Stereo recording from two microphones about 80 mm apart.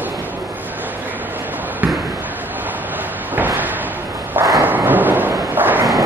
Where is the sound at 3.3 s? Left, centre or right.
Right.